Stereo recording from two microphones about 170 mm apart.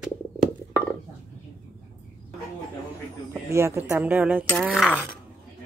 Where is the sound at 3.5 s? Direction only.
15° right (ahead or behind); by 5.0 s centre (ahead or behind).